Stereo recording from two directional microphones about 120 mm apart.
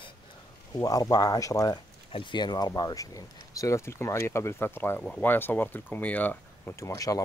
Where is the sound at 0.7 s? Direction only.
30° left (ahead or behind).